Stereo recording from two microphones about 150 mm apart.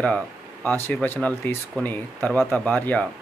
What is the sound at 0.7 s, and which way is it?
Speech, 15° left (ahead or behind).